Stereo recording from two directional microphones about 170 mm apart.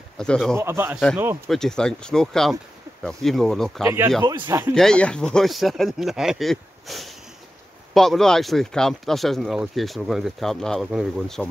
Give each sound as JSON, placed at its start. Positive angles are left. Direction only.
{"t": 0.2, "sound": "speech", "side_deg": 5}
{"t": 0.6, "sound": "speech", "side_deg": -15}
{"t": 1.5, "sound": "speech", "side_deg": 5}
{"t": 3.8, "sound": "speech", "side_deg": -15}
{"t": 4.7, "sound": "speech", "side_deg": 5}